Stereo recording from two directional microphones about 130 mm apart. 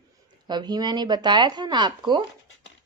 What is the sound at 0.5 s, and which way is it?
Speech, 35° right (ahead or behind).